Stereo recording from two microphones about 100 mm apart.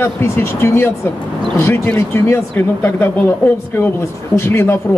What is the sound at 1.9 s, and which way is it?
Speech, 25° left (ahead or behind).